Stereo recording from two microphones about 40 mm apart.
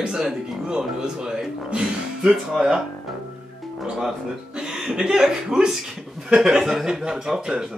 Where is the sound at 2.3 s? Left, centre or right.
Centre.